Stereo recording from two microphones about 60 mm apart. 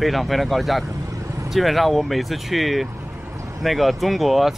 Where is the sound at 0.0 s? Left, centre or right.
Centre.